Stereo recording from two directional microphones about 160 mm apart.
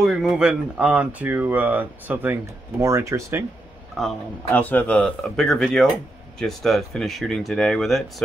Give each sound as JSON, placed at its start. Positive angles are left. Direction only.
{"t": 0.0, "sound": "speech", "side_deg": 0}
{"t": 4.0, "sound": "speech", "side_deg": 10}